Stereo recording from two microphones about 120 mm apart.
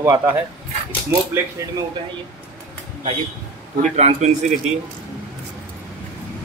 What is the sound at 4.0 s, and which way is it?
Speech, 70° right (ahead or behind).